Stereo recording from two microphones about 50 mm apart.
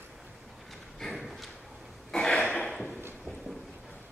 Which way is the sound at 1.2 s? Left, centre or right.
Centre.